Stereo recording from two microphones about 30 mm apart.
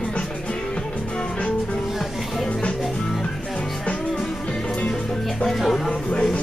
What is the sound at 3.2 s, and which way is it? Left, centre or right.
Music, left.